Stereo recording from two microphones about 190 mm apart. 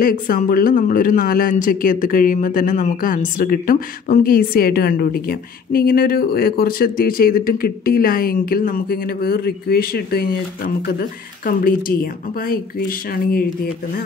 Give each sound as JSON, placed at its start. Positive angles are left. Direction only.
{"t": 0.0, "sound": "speech", "side_deg": 50}